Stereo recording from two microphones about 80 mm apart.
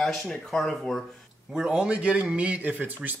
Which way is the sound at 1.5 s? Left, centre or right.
Centre.